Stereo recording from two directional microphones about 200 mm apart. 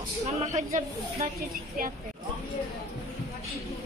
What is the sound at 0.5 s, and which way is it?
Speech, 35° right (ahead or behind).